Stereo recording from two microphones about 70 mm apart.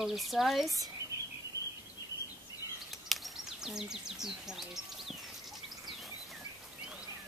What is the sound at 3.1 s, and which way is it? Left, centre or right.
Speech, centre.